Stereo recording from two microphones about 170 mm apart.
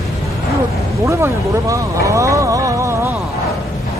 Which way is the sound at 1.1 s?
20° right (ahead or behind).